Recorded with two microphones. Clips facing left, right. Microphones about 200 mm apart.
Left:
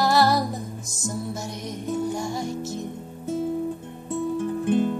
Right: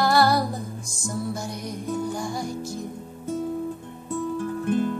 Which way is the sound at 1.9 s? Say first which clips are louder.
Left 2 dB; 25° left (ahead or behind).